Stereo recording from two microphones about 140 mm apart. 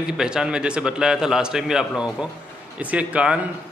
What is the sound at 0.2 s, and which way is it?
A man's voice, 5° right (ahead or behind).